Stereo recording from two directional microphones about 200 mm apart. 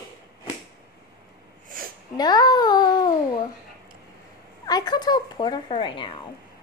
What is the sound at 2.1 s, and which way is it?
Speech, 20° left (ahead or behind).